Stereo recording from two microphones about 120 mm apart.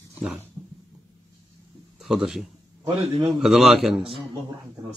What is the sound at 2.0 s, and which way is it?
Speech, 5° right (ahead or behind).